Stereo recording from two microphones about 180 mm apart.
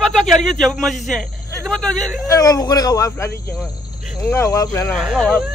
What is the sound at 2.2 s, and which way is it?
Speech, 20° left (ahead or behind).